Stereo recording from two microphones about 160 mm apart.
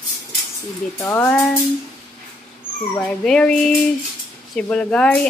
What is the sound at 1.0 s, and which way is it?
Speech, 15° left (ahead or behind).